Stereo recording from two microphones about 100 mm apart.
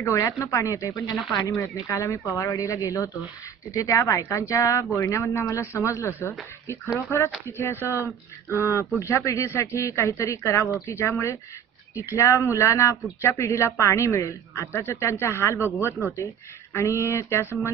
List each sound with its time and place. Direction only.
0.0 s a man's voice: 30° left (ahead or behind)